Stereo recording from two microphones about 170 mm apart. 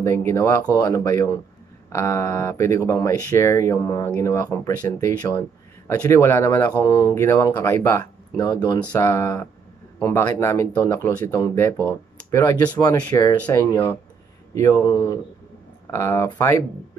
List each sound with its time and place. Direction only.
0.0 s a man's voice: 15° left (ahead or behind)